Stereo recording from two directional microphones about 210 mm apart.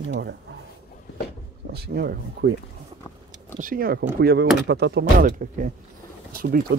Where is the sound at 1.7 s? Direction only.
50° right (ahead or behind).